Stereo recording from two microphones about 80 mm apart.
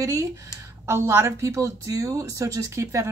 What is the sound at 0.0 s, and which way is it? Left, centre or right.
A woman's voice, right.